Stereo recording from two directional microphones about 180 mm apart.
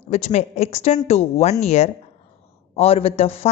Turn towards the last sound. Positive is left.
turn(degrees=35)  # may be behind; listen again after turning